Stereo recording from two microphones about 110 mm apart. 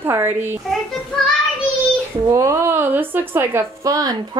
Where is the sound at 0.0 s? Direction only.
20° right (ahead or behind).